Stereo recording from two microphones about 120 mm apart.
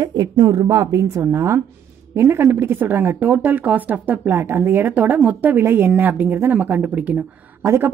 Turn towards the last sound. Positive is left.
turn(degrees=-10)  # may be behind; listen again after turning